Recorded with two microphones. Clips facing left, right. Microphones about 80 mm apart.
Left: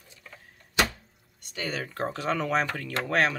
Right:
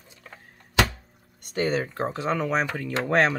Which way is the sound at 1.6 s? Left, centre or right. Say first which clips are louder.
Right 4 dB; right.